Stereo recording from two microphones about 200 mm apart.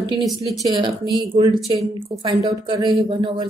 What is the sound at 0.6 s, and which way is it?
A woman's voice, 20° right (ahead or behind).